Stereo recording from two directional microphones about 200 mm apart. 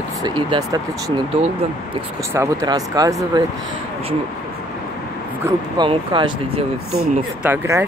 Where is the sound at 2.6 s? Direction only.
15° right (ahead or behind).